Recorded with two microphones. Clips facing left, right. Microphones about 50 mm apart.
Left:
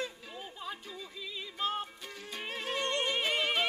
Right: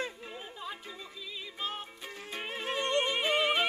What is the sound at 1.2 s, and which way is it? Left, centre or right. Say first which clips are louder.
Music: left 3 dB; centre.